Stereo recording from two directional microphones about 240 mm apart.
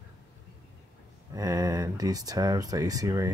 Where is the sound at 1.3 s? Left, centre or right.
Centre.